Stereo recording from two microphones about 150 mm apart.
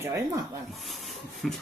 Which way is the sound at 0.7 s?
Centre (ahead or behind).